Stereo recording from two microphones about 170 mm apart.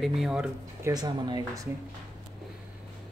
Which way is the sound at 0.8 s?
25° right (ahead or behind).